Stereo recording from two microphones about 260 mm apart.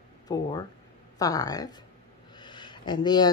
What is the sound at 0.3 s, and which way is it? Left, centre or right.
Speech, centre.